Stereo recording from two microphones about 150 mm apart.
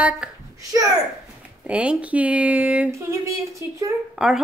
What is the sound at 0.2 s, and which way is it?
Speech, 5° right (ahead or behind).